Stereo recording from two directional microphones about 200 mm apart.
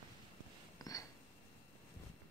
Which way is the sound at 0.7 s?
15° left (ahead or behind).